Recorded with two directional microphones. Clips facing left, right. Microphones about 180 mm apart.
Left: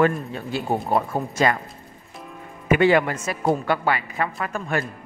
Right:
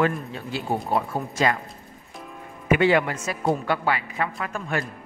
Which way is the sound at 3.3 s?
60° left (ahead or behind).